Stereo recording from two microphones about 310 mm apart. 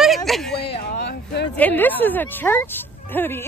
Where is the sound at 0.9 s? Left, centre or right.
Left.